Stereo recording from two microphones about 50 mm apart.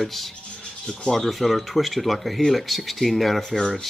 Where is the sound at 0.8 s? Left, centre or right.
Centre.